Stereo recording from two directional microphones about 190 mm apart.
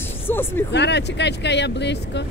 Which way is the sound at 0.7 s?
65° left (ahead or behind).